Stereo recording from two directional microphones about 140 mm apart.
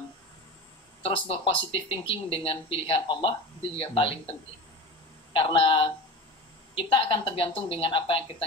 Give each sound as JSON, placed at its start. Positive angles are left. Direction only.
{"t": 1.0, "sound": "speech", "side_deg": 40}
{"t": 5.3, "sound": "speech", "side_deg": 35}